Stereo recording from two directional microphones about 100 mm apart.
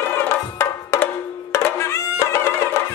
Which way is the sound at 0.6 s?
30° left (ahead or behind).